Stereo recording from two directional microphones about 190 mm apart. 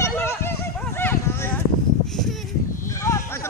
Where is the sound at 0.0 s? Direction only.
15° left (ahead or behind).